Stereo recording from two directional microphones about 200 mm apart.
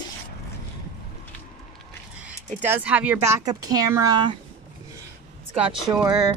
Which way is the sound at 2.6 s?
10° right (ahead or behind).